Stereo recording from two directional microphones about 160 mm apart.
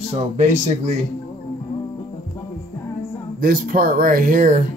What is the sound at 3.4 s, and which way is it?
Speech, 65° right (ahead or behind).